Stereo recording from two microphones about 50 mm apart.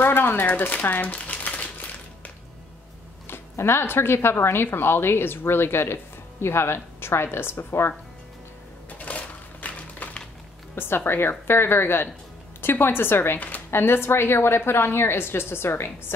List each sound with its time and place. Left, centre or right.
0.0 s typewriter: left
3.3 s speech: left
8.9 s a sound: left
11.1 s speech: left